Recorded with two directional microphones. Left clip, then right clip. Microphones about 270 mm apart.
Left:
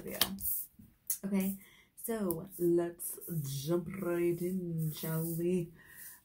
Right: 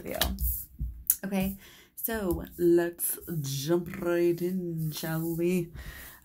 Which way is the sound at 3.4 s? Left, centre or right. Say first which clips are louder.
Right 7 dB; right.